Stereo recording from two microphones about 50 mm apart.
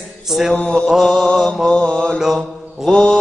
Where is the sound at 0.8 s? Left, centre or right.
Centre.